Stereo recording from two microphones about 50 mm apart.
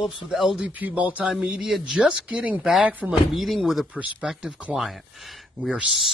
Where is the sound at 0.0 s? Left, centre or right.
Centre.